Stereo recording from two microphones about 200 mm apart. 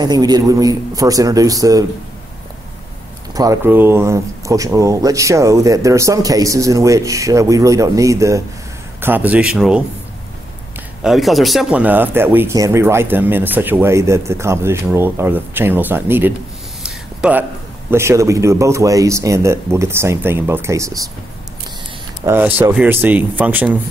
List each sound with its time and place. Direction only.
0.0 s speech: 20° right (ahead or behind)
3.3 s speech: 15° right (ahead or behind)
11.0 s speech: centre (ahead or behind)
16.8 s a sound: 5° right (ahead or behind)
17.9 s speech: 15° right (ahead or behind)
22.2 s speech: 10° right (ahead or behind)